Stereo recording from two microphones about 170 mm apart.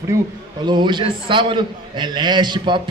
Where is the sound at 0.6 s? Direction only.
25° right (ahead or behind).